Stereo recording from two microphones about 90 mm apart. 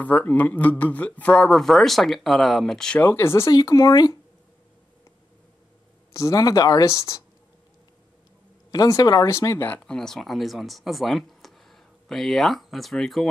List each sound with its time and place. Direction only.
0.0 s speech: 20° left (ahead or behind)
3.0 s speech: 25° left (ahead or behind)
3.5 s speech: 45° left (ahead or behind)
6.1 s speech: 40° left (ahead or behind)
8.7 s speech: 45° left (ahead or behind)
9.3 s speech: 30° left (ahead or behind)
9.7 s speech: 10° left (ahead or behind)